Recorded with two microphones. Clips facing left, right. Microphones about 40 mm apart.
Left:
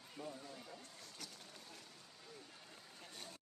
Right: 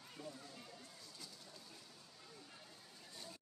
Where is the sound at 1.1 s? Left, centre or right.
Left.